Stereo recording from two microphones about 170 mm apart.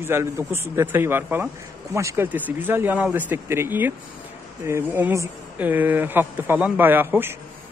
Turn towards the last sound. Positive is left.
turn(degrees=-10)  # may be behind; listen again after turning